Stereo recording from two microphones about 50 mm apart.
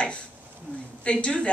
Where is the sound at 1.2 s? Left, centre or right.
Left.